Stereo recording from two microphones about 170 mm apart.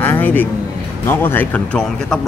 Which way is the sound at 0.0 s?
10° left (ahead or behind).